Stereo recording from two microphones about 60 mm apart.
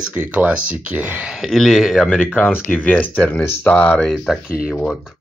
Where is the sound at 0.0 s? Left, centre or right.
Right.